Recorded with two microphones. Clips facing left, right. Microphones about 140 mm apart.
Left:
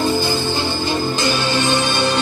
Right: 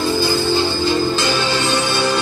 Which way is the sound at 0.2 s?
15° left (ahead or behind).